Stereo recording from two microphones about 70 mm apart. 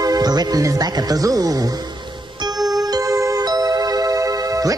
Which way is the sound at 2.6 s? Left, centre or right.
Right.